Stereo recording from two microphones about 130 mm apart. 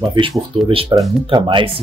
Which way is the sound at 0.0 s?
35° right (ahead or behind).